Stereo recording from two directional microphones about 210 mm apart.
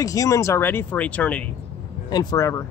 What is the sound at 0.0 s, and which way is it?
Speech, 15° left (ahead or behind).